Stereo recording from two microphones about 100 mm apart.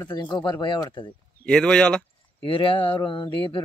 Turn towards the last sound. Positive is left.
turn(degrees=55)  # may be behind; listen again after turning